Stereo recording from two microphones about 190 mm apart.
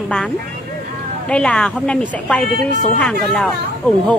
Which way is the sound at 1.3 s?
5° left (ahead or behind).